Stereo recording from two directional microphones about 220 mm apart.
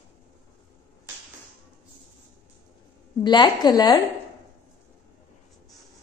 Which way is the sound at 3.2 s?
20° left (ahead or behind).